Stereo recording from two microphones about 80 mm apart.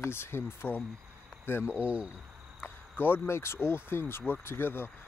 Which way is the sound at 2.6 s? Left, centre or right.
Left.